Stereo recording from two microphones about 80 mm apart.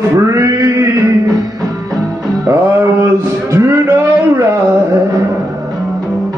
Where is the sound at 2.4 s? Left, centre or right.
Right.